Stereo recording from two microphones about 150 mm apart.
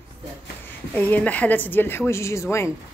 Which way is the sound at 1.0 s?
10° left (ahead or behind).